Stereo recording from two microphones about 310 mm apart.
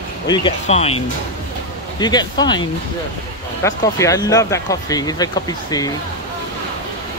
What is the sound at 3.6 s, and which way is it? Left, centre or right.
Speech, centre.